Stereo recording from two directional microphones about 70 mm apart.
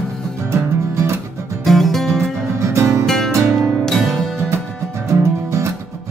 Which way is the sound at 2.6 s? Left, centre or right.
Right.